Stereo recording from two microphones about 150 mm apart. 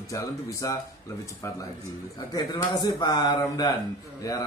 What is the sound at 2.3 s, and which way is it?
A man's voice, 25° left (ahead or behind).